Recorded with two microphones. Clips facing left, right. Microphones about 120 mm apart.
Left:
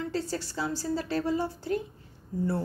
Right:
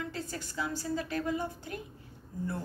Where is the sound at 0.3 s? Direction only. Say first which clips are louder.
Left 4 dB; 35° left (ahead or behind).